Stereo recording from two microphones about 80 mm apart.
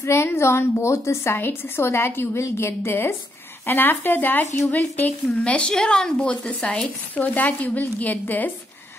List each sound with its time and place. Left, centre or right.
0.0 s a woman's voice: left